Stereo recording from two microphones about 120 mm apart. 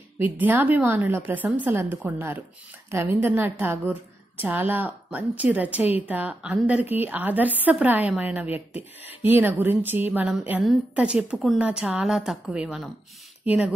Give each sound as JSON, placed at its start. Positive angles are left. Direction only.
{"t": 0.2, "sound": "a woman's voice", "side_deg": -15}
{"t": 13.5, "sound": "a woman's voice", "side_deg": -10}